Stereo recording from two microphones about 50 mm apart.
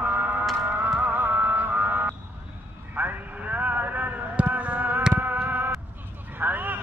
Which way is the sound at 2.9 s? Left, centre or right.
Right.